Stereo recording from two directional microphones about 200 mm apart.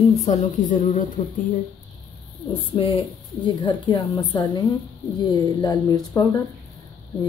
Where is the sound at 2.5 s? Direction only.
25° left (ahead or behind).